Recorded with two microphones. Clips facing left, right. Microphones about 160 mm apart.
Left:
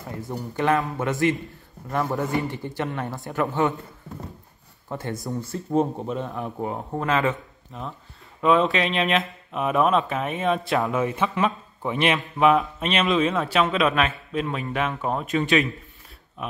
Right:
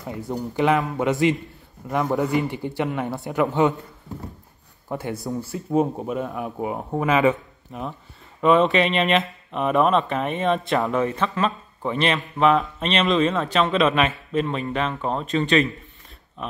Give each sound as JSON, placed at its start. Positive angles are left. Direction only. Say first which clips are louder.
{"t": 0.1, "sound": "speech", "louder": "right 4 dB", "side_deg": -15}
{"t": 4.8, "sound": "a man's voice", "louder": "right 2 dB", "side_deg": -10}